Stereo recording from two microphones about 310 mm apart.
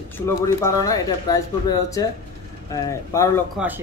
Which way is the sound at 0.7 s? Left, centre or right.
Centre.